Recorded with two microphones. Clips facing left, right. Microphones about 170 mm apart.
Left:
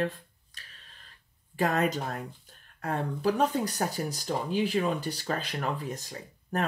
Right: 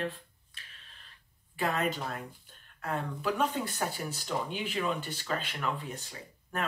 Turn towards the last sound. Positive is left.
turn(degrees=40)  # may be behind; listen again after turning